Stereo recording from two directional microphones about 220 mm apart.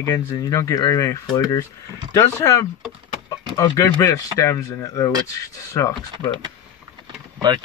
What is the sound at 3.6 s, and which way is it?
Speech, 15° left (ahead or behind).